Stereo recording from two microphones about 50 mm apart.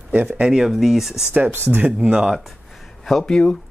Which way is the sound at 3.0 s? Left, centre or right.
Centre.